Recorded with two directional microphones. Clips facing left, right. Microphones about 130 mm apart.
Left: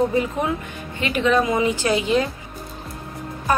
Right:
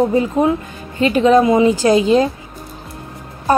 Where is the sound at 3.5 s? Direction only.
35° right (ahead or behind).